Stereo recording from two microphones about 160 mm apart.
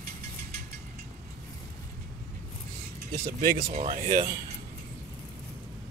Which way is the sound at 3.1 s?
65° right (ahead or behind).